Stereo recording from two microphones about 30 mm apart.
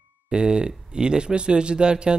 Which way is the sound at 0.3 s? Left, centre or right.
Right.